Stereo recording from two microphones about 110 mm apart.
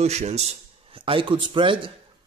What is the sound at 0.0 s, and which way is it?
A man's voice, 85° right.